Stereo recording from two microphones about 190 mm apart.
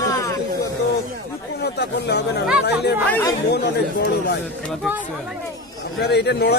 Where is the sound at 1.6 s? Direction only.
60° left (ahead or behind).